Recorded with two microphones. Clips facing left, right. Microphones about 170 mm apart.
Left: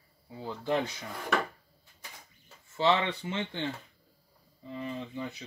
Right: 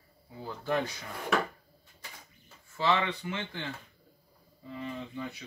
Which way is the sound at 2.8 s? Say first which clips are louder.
Left 2 dB; 25° left (ahead or behind).